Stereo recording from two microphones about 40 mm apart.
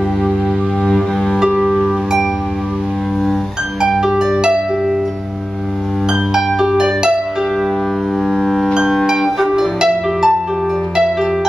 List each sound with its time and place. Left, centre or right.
1.5 s music: centre
4.0 s harp: centre
6.3 s harp: centre
9.6 s music: centre